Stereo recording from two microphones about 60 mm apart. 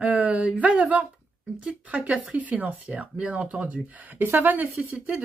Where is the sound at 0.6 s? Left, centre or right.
Right.